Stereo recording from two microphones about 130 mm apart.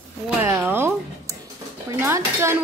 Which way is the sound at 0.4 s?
20° right (ahead or behind).